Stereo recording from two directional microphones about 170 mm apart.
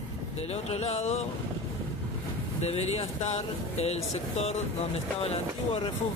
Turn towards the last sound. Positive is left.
turn(degrees=35)  # may be behind; listen again after turning